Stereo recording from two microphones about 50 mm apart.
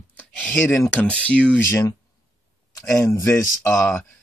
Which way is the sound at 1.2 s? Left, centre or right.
Left.